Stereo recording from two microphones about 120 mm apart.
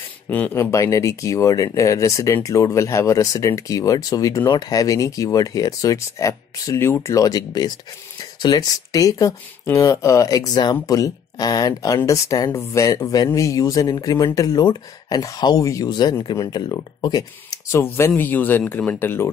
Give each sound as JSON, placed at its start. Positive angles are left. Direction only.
{"t": 0.3, "sound": "speech", "side_deg": 15}
{"t": 0.6, "sound": "speech", "side_deg": 25}